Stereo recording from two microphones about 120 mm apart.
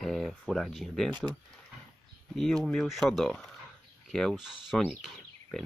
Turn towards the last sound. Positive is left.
turn(degrees=0)  # may be behind; listen again after turning